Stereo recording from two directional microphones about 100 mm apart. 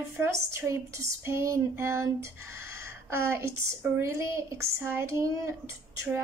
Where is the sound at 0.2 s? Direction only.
25° right (ahead or behind).